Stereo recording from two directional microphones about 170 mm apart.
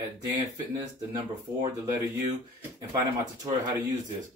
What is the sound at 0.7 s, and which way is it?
Speech, 20° right (ahead or behind).